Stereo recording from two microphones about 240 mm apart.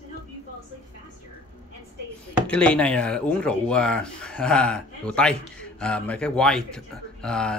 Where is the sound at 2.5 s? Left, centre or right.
Centre.